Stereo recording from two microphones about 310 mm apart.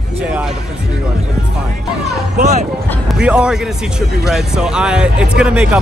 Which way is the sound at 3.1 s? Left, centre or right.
Centre.